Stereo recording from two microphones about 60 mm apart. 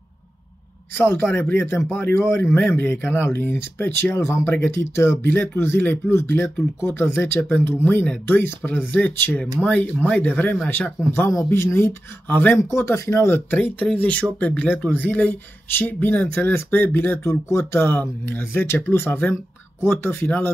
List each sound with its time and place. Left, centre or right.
0.9 s speech: left
4.1 s speech: left
11.0 s speech: left
12.3 s speech: left
12.5 s speech: left
13.5 s speech: left
14.4 s speech: centre; by 17.6 s left
17.7 s speech: left